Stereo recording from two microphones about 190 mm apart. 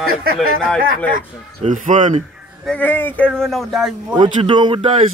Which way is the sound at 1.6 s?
40° right (ahead or behind).